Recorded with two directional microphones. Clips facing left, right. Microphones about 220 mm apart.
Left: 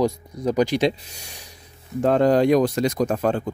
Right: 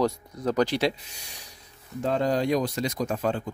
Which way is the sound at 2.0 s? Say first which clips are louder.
Left 8 dB; 60° left (ahead or behind).